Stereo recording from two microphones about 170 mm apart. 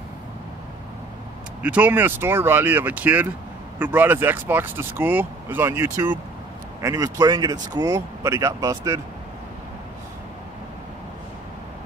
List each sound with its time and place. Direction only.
1.6 s speech: 10° right (ahead or behind)